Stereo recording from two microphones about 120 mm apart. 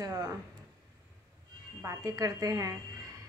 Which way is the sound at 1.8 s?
30° right (ahead or behind).